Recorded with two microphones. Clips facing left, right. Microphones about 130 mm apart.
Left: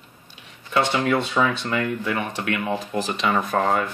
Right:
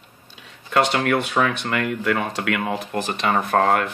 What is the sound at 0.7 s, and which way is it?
Speech, 70° right (ahead or behind).